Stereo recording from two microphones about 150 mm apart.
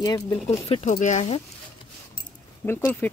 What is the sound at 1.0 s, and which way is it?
Speech, 50° left (ahead or behind).